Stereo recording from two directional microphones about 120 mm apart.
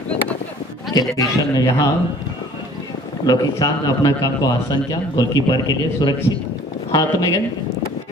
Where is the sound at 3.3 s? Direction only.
35° left (ahead or behind).